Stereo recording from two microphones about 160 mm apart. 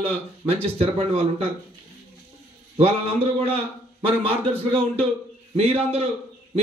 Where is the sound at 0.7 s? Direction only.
40° right (ahead or behind).